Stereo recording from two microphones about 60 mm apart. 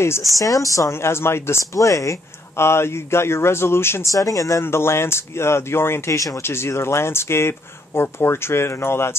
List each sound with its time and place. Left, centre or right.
0.2 s speech: left
1.0 s speech: left
4.0 s speech: left
4.6 s speech: left